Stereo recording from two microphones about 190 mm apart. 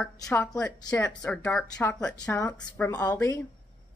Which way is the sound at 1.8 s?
15° left (ahead or behind).